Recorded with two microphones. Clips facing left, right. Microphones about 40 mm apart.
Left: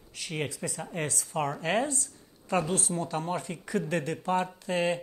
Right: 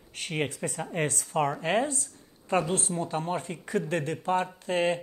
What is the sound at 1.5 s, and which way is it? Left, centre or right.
Speech, right.